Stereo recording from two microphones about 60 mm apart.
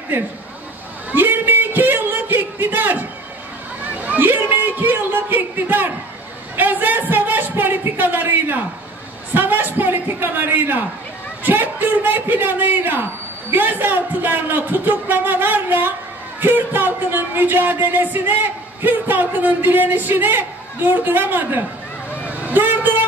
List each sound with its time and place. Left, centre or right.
1.1 s a sound: right
9.3 s speech: right
22.5 s vehicle: right